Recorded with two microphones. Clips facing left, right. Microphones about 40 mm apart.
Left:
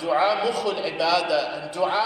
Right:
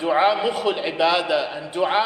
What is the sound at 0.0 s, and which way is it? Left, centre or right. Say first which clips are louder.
A man's voice: right 3 dB; right.